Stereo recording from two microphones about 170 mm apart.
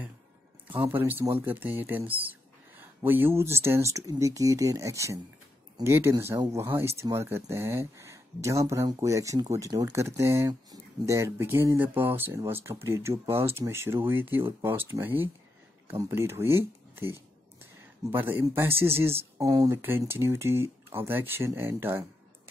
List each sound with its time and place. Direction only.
0.7 s speech: 10° right (ahead or behind)